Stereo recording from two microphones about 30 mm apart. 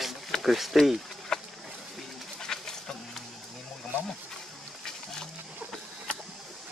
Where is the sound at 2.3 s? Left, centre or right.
Centre.